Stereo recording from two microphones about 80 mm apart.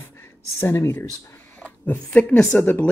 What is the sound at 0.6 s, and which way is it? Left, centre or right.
Speech, left.